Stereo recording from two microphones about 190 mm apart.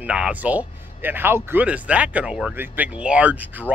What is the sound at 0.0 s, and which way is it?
Speech, 5° right (ahead or behind).